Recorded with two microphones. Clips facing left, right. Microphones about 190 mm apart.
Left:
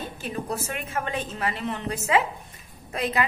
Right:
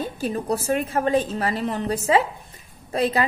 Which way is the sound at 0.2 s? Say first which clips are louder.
Right 5 dB; 35° right (ahead or behind).